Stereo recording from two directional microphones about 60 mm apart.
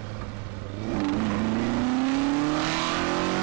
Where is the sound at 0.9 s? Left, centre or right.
Right.